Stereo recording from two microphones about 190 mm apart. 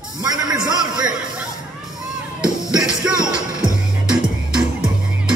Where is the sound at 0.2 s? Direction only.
20° right (ahead or behind).